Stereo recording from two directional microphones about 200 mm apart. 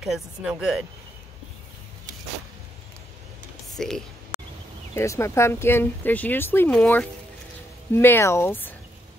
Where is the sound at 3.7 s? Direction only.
Centre (ahead or behind).